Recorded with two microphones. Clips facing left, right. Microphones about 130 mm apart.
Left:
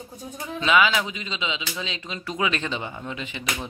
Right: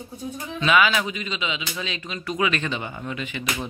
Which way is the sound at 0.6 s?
20° left (ahead or behind).